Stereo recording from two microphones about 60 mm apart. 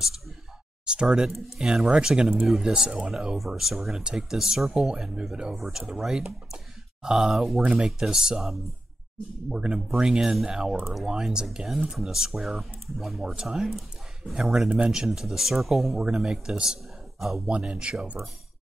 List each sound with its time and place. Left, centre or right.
0.8 s speech: centre
2.7 s speech: centre
16.0 s speech: centre; by 18.3 s right